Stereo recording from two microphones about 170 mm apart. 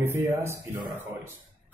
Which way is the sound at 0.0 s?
15° right (ahead or behind).